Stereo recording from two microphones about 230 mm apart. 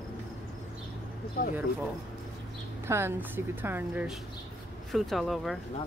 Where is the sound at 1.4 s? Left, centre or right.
Left.